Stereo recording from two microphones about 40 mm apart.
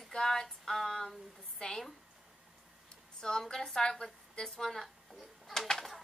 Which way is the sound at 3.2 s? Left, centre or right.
Centre.